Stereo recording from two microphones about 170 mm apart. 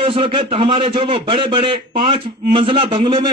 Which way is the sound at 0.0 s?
30° right (ahead or behind).